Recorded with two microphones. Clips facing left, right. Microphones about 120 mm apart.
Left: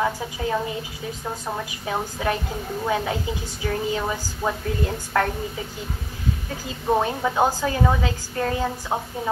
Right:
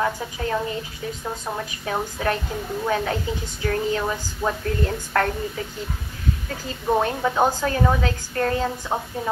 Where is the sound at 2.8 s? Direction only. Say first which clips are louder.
Even; 15° left (ahead or behind).